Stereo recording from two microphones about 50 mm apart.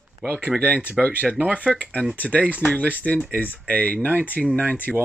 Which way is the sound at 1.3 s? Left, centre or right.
Right.